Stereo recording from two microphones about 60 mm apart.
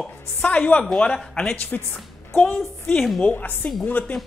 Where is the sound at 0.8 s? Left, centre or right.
Centre.